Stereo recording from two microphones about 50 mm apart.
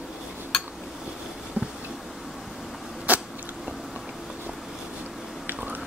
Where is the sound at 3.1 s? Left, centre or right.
Right.